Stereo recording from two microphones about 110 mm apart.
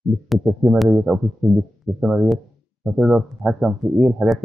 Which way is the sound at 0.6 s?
Centre (ahead or behind).